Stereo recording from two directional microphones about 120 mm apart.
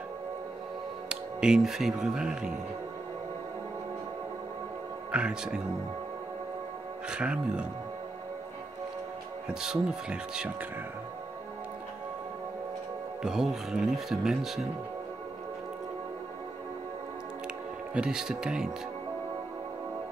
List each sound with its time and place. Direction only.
1.0 s speech: 5° right (ahead or behind)
5.1 s speech: 5° right (ahead or behind)
7.1 s speech: 10° right (ahead or behind)
9.5 s speech: 5° right (ahead or behind)
13.2 s speech: 5° right (ahead or behind)
17.9 s speech: 5° right (ahead or behind)